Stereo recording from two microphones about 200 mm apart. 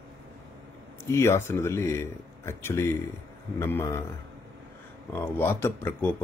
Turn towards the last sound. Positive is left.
turn(degrees=10)  # may be behind; listen again after turning